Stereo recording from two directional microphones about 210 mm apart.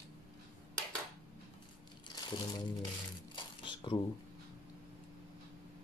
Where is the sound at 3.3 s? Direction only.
20° left (ahead or behind).